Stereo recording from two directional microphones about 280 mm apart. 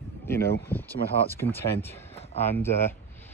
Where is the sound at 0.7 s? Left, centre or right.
Centre.